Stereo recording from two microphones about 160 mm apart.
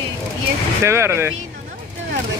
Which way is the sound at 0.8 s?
15° right (ahead or behind).